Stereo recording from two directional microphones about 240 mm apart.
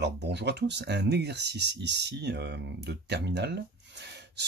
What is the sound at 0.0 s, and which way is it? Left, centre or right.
Speech, right.